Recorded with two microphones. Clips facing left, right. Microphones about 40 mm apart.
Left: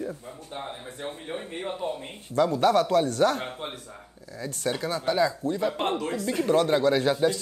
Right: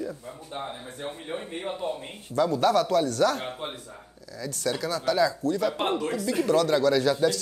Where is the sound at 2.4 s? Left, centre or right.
Left.